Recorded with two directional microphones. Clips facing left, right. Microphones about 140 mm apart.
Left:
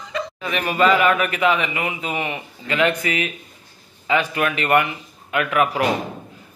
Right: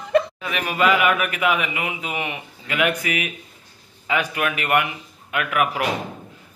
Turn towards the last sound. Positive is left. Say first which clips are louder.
# left 3 dB
turn(degrees=-10)  # may be behind; listen again after turning